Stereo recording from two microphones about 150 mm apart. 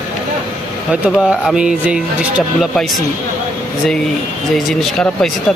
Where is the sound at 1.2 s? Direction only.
5° right (ahead or behind).